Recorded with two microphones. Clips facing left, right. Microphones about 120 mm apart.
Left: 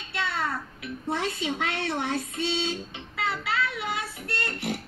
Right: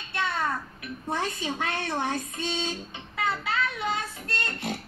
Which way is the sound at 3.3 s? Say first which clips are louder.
Even; 70° left (ahead or behind).